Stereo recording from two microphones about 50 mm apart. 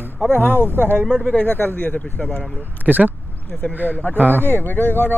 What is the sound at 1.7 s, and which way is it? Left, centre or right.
Speech, left.